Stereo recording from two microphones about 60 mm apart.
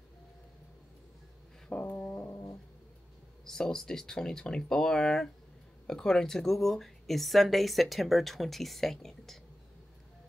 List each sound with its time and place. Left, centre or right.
1.7 s dog: left
3.4 s speech: centre